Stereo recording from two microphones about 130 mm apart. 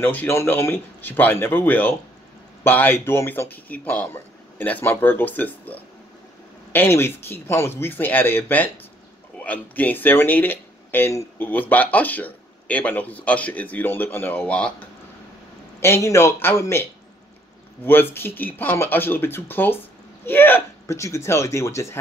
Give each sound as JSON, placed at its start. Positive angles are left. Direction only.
{"t": 0.0, "sound": "speech", "side_deg": 15}
{"t": 15.8, "sound": "speech", "side_deg": 20}
{"t": 18.1, "sound": "speech", "side_deg": 15}